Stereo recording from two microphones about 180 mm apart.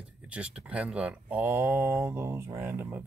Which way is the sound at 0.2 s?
5° right (ahead or behind).